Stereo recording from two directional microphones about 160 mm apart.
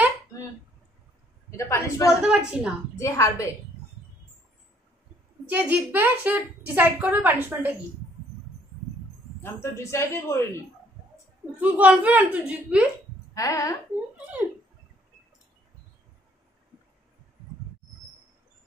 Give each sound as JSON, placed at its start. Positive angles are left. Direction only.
{"t": 1.6, "sound": "a woman's voice", "side_deg": 20}
{"t": 2.2, "sound": "a woman's voice", "side_deg": -5}
{"t": 3.0, "sound": "a woman's voice", "side_deg": 20}
{"t": 5.5, "sound": "a woman's voice", "side_deg": -10}
{"t": 9.4, "sound": "speech", "side_deg": 15}
{"t": 11.6, "sound": "a woman's voice", "side_deg": -10}
{"t": 13.3, "sound": "a woman's voice", "side_deg": 20}